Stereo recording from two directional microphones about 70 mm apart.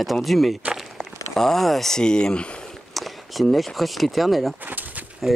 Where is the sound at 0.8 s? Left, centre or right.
Centre.